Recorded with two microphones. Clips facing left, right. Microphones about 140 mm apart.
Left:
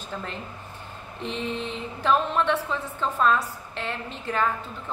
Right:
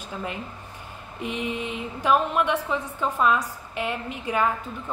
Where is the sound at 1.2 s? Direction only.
10° right (ahead or behind).